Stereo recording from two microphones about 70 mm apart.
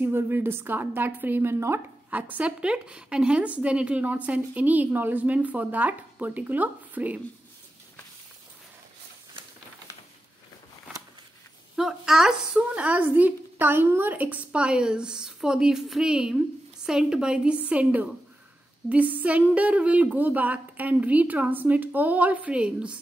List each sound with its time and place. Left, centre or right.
0.0 s speech: right
2.0 s speech: right
11.7 s a sound: centre
12.5 s speech: centre